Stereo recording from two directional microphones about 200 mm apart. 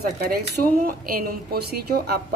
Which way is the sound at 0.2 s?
45° right (ahead or behind).